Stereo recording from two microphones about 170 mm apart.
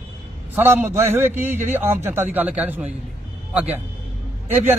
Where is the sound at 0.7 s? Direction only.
15° right (ahead or behind).